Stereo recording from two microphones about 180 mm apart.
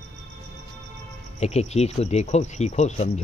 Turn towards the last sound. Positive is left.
turn(degrees=40)  # may be behind; listen again after turning